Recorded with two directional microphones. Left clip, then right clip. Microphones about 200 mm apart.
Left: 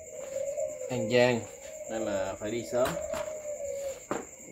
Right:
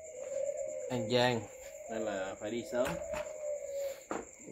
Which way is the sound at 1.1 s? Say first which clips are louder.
Left 6 dB; 25° right (ahead or behind).